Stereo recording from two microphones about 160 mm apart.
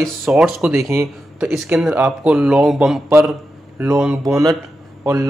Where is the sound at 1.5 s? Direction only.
5° right (ahead or behind).